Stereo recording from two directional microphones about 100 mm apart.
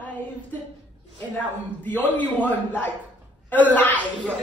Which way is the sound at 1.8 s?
15° left (ahead or behind).